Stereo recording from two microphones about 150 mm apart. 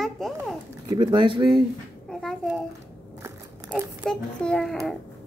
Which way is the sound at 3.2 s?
15° right (ahead or behind).